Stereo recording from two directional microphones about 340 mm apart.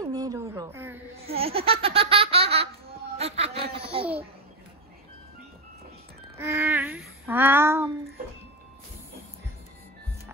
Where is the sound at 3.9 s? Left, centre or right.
Centre.